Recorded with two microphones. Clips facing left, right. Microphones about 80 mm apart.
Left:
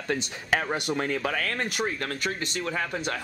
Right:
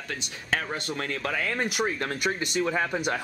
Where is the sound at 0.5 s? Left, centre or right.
Centre.